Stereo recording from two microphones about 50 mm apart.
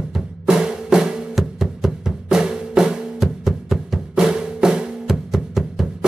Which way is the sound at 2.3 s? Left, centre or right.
Centre.